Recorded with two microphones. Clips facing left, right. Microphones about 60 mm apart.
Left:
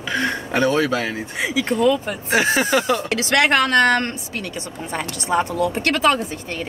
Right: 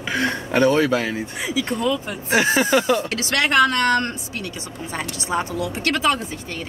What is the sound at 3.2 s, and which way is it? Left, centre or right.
Speech, left.